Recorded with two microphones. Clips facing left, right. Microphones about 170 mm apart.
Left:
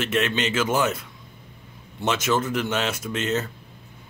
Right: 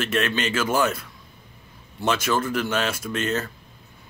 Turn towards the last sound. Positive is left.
turn(degrees=20)  # may be behind; listen again after turning